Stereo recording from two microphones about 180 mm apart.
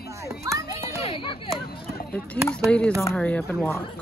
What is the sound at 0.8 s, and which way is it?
Speech, 30° left (ahead or behind).